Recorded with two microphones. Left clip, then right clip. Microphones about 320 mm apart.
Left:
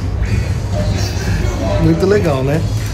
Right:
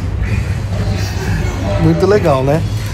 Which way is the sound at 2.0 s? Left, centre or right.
Centre.